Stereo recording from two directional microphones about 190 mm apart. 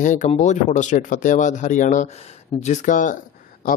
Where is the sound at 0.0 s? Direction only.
40° left (ahead or behind).